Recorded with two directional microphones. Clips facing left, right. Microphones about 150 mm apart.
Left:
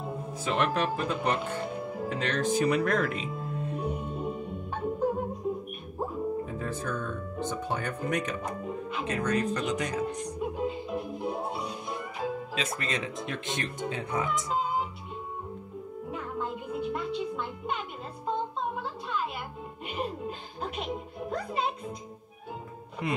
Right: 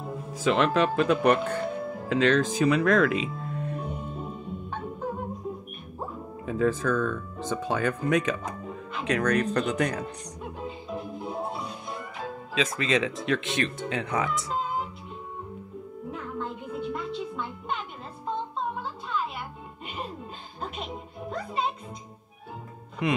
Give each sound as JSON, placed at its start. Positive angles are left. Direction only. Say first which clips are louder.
{"t": 0.3, "sound": "speech", "louder": "right 5 dB", "side_deg": -90}
{"t": 2.0, "sound": "speech", "louder": "right 7 dB", "side_deg": -90}
{"t": 3.3, "sound": "music", "louder": "even", "side_deg": 5}
{"t": 6.4, "sound": "speech", "louder": "right 8 dB", "side_deg": -90}
{"t": 10.1, "sound": "music", "louder": "left 6 dB", "side_deg": 5}
{"t": 12.7, "sound": "speech", "louder": "right 7 dB", "side_deg": -90}
{"t": 14.5, "sound": "music", "louder": "left 1 dB", "side_deg": 5}
{"t": 16.1, "sound": "music", "louder": "even", "side_deg": 5}
{"t": 20.0, "sound": "music", "louder": "left 4 dB", "side_deg": 5}
{"t": 23.0, "sound": "music", "louder": "right 5 dB", "side_deg": -90}